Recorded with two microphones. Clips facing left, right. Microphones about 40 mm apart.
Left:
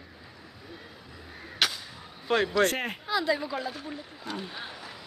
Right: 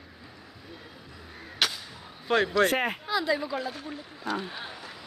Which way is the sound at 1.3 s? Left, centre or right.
Centre.